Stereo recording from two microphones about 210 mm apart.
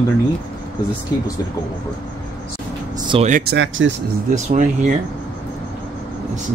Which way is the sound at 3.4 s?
55° right (ahead or behind).